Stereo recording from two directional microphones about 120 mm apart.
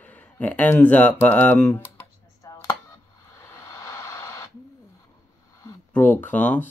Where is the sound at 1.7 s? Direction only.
25° left (ahead or behind).